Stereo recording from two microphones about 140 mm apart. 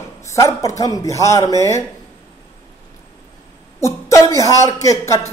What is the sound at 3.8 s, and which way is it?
A man's voice, 20° left (ahead or behind).